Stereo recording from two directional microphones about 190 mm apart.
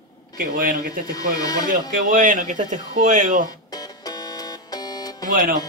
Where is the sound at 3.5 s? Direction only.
20° left (ahead or behind).